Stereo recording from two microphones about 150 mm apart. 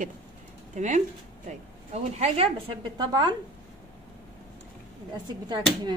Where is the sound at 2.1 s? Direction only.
45° right (ahead or behind).